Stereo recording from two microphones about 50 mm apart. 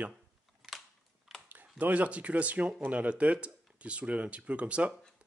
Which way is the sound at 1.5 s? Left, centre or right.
Right.